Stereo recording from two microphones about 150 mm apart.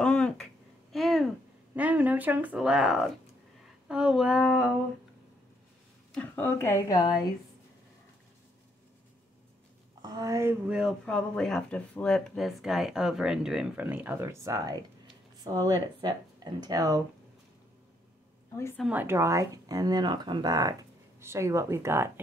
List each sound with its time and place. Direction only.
0.0 s a sound: 5° left (ahead or behind)
1.8 s speech: 10° right (ahead or behind)
6.1 s speech: 15° left (ahead or behind)
10.0 s a woman's voice: 25° right (ahead or behind)
10.7 s speech: 5° right (ahead or behind); by 17.0 s 20° right (ahead or behind)
18.8 s speech: 10° right (ahead or behind)